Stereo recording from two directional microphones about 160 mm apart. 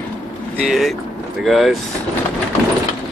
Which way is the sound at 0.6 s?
Centre (ahead or behind).